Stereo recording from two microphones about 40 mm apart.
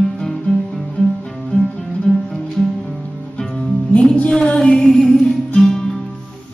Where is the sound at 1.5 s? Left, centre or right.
Left.